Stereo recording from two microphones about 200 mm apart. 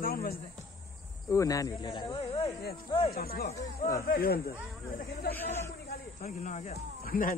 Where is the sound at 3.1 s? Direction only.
50° left (ahead or behind).